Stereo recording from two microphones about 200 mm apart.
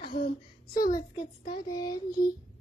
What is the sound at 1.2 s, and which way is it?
Child singing, 20° left (ahead or behind).